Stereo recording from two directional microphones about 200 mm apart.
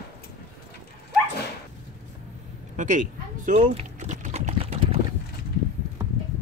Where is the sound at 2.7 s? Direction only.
40° right (ahead or behind).